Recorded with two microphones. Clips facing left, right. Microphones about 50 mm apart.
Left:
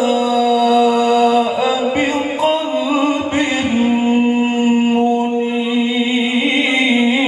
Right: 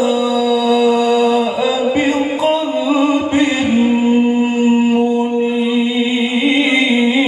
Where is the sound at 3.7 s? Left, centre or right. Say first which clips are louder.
Right 1 dB; left.